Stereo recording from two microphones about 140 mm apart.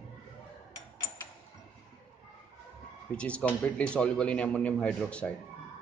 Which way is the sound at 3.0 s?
10° left (ahead or behind).